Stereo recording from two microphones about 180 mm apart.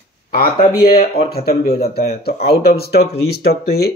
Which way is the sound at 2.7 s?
60° left (ahead or behind).